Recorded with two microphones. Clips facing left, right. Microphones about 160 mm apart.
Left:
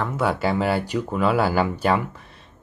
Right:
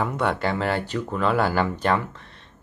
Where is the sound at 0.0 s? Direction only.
Centre (ahead or behind).